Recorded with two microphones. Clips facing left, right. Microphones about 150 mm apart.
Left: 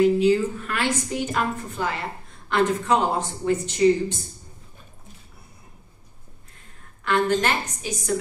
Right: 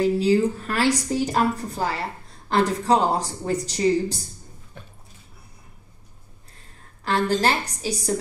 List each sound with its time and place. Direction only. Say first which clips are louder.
0.0 s a woman's voice: left 1 dB; 35° right (ahead or behind)
7.1 s a woman's voice: even; 35° right (ahead or behind)